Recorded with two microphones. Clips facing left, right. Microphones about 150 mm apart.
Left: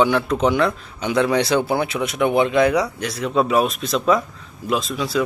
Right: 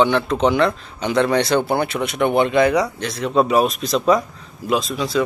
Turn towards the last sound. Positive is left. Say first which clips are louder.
# right 2 dB
turn(degrees=5)  # may be behind; listen again after turning